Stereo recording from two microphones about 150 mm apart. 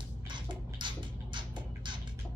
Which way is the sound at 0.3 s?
30° right (ahead or behind).